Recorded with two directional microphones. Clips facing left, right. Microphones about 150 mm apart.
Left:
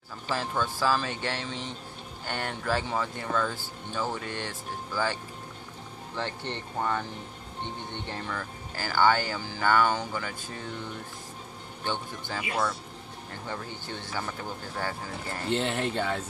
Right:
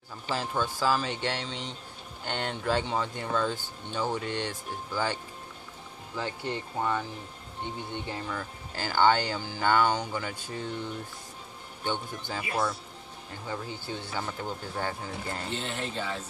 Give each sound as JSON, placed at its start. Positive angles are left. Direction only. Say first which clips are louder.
{"t": 0.3, "sound": "speech", "louder": "even", "side_deg": -15}
{"t": 11.8, "sound": "speech", "louder": "right 1 dB", "side_deg": -15}
{"t": 14.8, "sound": "speech", "louder": "left 1 dB", "side_deg": -25}
{"t": 15.5, "sound": "speech", "louder": "left 10 dB", "side_deg": 65}